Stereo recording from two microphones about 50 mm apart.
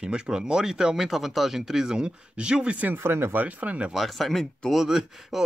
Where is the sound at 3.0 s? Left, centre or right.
Right.